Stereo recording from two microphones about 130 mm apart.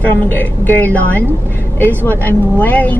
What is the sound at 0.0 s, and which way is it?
Speech, 15° left (ahead or behind).